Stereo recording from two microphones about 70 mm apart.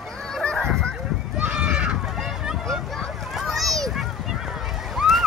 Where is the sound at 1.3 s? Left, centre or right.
Centre.